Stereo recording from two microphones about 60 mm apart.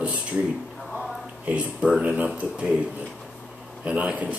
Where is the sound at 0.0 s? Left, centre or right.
Right.